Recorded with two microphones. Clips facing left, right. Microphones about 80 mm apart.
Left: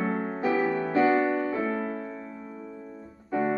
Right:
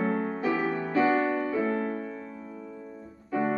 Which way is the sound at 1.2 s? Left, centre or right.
Centre.